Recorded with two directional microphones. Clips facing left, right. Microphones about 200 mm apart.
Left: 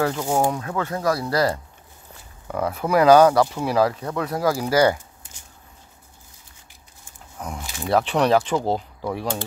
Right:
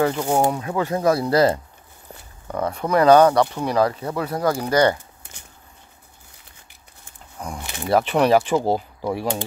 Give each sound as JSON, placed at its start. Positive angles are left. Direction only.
{"t": 0.0, "sound": "speech", "side_deg": 0}
{"t": 2.4, "sound": "speech", "side_deg": 5}
{"t": 5.2, "sound": "a sound", "side_deg": -65}
{"t": 7.3, "sound": "speech", "side_deg": 5}